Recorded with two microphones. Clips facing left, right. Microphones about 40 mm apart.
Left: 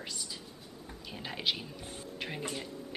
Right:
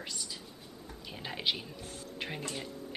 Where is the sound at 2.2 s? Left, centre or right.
Centre.